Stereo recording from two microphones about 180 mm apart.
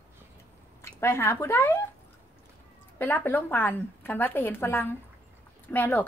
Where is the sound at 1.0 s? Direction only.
15° left (ahead or behind).